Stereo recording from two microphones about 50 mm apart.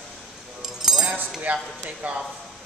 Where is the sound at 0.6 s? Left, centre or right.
Centre.